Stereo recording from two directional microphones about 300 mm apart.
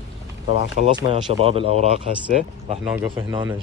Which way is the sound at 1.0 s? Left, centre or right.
Centre.